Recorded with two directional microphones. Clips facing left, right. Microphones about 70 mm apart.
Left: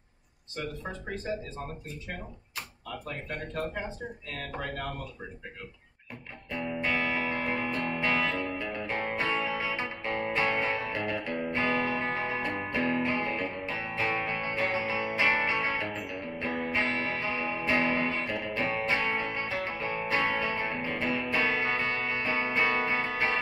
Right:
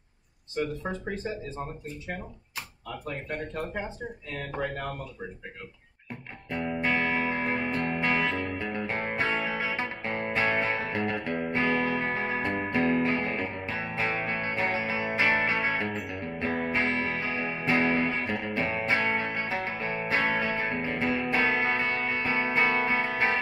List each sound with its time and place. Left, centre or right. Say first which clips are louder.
6.5 s music: right 3 dB; right